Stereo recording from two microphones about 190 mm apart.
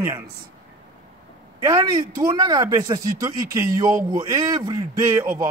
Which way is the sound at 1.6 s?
20° right (ahead or behind).